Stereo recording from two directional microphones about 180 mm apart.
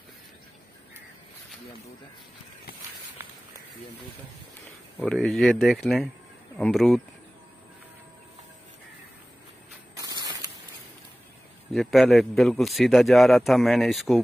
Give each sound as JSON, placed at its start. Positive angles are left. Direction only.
{"t": 5.0, "sound": "a man's voice", "side_deg": 5}
{"t": 9.9, "sound": "a sound", "side_deg": -20}
{"t": 11.7, "sound": "a man's voice", "side_deg": 0}